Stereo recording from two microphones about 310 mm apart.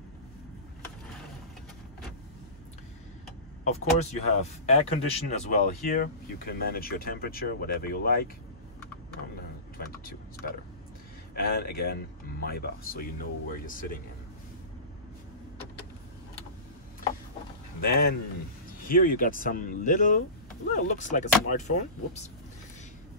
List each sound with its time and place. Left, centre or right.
3.6 s speech: left
9.8 s a sound: left
11.3 s speech: left
17.7 s speech: left